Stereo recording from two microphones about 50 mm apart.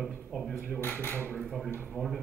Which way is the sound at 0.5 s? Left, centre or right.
Left.